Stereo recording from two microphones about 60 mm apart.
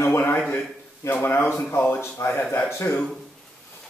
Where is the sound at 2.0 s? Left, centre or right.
Left.